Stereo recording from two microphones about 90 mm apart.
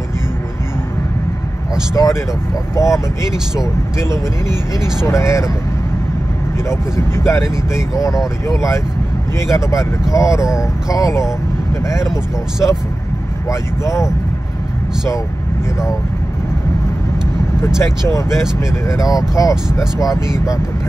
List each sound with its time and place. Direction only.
2.0 s speech: 45° left (ahead or behind)
5.0 s speech: 35° left (ahead or behind)
6.7 s speech: 30° left (ahead or behind)
13.5 s speech: 35° left (ahead or behind)
17.7 s speech: 30° left (ahead or behind)